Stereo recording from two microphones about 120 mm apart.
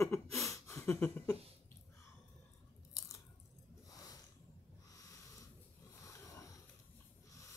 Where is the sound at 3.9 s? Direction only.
30° left (ahead or behind).